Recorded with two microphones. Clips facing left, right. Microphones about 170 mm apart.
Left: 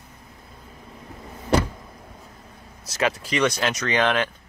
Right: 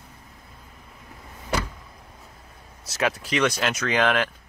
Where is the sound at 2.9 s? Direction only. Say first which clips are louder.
Left 1 dB; centre (ahead or behind).